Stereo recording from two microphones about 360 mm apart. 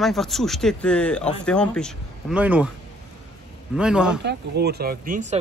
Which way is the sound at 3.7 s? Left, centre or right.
Centre.